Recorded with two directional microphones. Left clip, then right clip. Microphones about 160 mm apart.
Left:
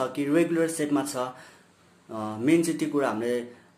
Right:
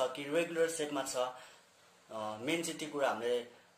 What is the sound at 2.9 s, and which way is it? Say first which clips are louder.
Speech: left 4 dB; centre (ahead or behind).